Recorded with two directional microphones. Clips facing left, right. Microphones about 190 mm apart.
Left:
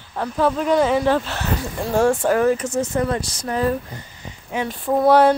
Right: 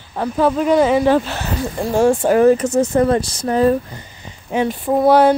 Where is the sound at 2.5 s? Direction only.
35° right (ahead or behind).